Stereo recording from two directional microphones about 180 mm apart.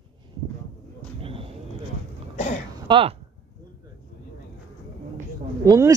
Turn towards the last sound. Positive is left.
turn(degrees=-20)  # may be behind; listen again after turning